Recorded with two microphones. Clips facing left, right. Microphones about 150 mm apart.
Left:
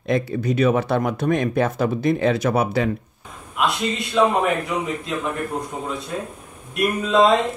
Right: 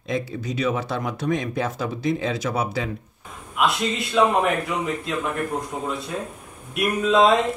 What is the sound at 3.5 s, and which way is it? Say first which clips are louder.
A man's voice: even; centre (ahead or behind).